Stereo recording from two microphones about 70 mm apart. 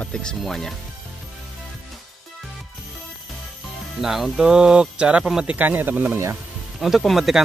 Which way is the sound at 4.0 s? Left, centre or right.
Centre.